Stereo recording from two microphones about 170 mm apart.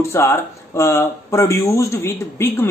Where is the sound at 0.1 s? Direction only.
15° left (ahead or behind).